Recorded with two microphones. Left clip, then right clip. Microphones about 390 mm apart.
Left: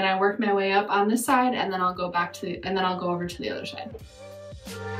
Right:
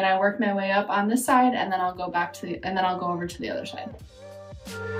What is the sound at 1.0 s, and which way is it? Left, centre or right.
A woman's voice, centre.